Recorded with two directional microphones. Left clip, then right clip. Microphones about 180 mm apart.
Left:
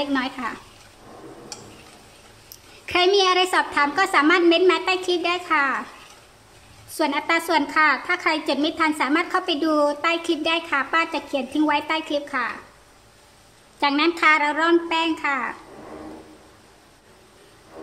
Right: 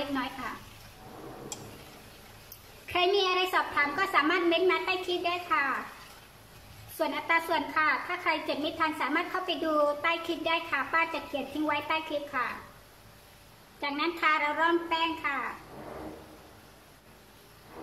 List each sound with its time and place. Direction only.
0.1 s a woman's voice: 45° left (ahead or behind)
2.9 s a woman's voice: 50° left (ahead or behind)
7.0 s a woman's voice: 50° left (ahead or behind)
13.7 s a woman's voice: 50° left (ahead or behind)